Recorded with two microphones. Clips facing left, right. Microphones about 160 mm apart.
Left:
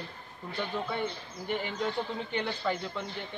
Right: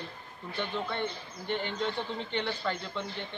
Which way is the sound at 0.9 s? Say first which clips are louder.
Left 1 dB; 5° left (ahead or behind).